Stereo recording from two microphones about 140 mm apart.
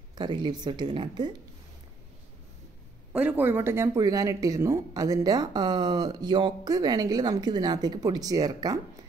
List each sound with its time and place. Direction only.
0.1 s speech: 30° right (ahead or behind)
3.1 s speech: 10° right (ahead or behind); by 8.7 s 30° right (ahead or behind)